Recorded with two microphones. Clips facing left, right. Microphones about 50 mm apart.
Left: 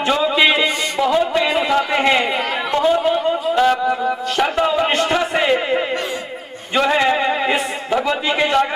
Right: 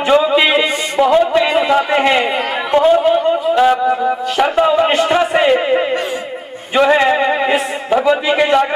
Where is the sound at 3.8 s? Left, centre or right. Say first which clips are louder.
Right 4 dB; right.